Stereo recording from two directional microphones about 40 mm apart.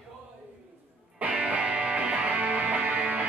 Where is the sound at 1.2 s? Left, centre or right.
Right.